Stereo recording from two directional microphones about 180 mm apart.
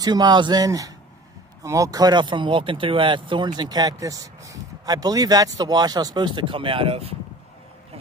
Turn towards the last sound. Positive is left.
turn(degrees=-30)  # may be behind; listen again after turning